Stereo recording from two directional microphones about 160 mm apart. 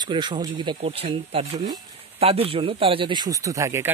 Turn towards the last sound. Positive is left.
turn(degrees=-15)  # may be behind; listen again after turning